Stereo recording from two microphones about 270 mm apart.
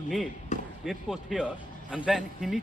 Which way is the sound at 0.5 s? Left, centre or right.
Left.